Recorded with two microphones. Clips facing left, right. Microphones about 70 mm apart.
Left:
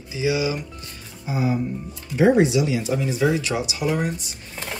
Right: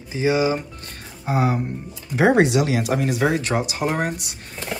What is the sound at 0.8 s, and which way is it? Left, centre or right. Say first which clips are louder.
Speech: right 4 dB; right.